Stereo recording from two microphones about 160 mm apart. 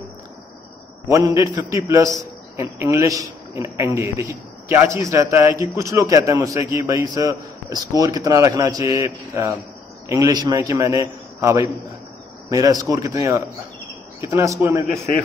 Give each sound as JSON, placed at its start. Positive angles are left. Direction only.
{"t": 1.0, "sound": "a man's voice", "side_deg": -20}